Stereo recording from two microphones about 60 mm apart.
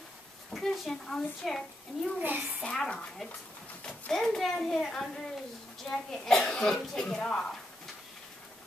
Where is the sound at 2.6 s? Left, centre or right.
Centre.